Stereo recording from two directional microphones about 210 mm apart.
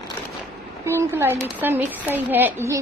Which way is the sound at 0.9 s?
10° right (ahead or behind).